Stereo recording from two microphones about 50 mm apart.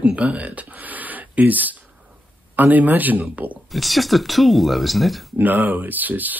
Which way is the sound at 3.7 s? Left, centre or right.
Centre.